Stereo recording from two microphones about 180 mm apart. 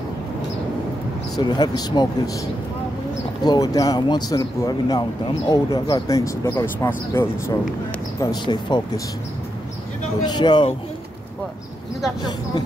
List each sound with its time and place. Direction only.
1.3 s speech: 25° left (ahead or behind)
3.4 s speech: 20° left (ahead or behind)
10.2 s speech: 25° left (ahead or behind)